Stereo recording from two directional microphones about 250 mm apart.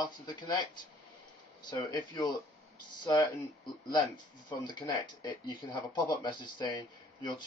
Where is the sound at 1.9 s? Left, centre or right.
Centre.